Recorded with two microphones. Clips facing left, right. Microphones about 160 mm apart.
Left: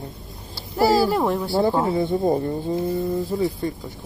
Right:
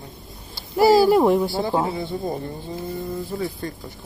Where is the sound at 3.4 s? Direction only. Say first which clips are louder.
Left 5 dB; 15° left (ahead or behind).